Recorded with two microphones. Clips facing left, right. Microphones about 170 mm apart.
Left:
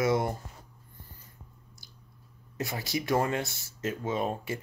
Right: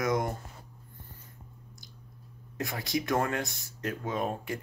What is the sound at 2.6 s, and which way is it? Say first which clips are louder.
Speech: right 1 dB; centre (ahead or behind).